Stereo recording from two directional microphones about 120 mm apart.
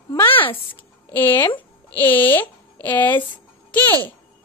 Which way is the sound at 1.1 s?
15° left (ahead or behind).